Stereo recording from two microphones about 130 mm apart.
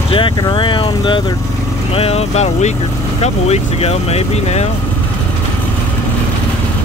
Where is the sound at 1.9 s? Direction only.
50° left (ahead or behind).